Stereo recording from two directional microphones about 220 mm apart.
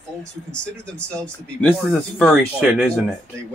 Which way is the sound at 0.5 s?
5° left (ahead or behind).